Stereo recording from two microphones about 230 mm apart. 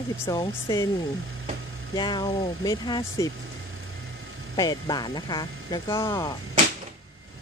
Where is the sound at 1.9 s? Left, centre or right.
Centre.